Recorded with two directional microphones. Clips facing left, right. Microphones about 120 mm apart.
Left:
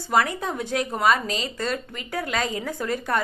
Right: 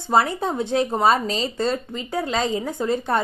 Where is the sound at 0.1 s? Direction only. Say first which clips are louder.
Right 3 dB; 30° right (ahead or behind).